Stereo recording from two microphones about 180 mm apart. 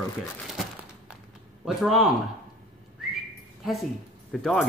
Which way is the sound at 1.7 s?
Centre (ahead or behind).